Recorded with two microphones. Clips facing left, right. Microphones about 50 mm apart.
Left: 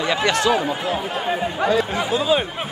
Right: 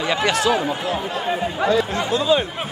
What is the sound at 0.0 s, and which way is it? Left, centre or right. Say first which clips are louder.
Speech: even; centre.